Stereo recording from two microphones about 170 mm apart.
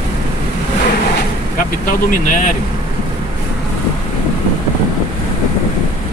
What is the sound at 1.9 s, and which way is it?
Speech, 50° left (ahead or behind).